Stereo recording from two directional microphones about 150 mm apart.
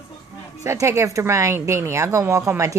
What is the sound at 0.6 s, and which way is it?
A woman's voice, 20° right (ahead or behind).